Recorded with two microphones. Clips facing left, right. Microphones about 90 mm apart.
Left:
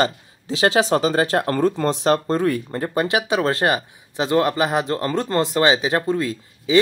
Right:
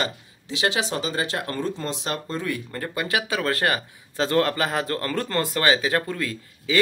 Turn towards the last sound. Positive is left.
turn(degrees=25)  # may be behind; listen again after turning